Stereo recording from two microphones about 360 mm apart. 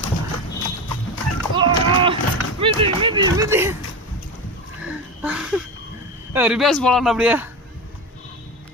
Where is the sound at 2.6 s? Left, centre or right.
Centre.